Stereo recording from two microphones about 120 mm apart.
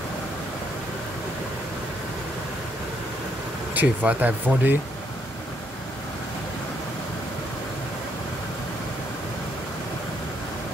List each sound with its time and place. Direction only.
3.7 s speech: 10° right (ahead or behind)